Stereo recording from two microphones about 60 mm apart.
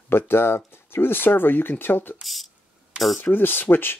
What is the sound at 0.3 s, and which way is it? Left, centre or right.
Speech, left.